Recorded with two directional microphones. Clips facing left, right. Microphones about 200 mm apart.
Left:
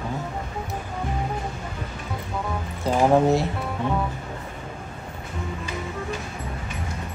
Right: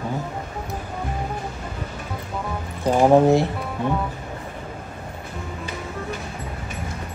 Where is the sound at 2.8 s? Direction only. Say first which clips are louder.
Right 4 dB; 15° right (ahead or behind).